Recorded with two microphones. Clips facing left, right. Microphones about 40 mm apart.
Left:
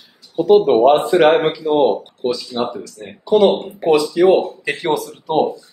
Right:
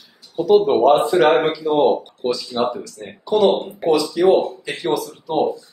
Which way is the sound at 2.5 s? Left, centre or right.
Centre.